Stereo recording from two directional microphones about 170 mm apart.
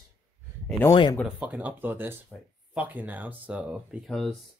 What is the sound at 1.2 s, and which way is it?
Speech, 10° right (ahead or behind).